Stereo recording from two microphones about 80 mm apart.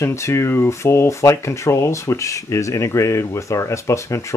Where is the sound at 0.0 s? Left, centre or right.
Left.